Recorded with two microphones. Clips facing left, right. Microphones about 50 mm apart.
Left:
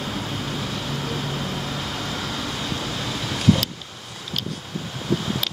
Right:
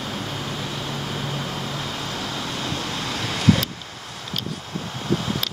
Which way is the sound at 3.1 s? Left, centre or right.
Right.